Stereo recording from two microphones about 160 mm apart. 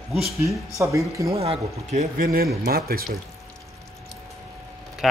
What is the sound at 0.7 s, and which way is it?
Speech, 20° right (ahead or behind).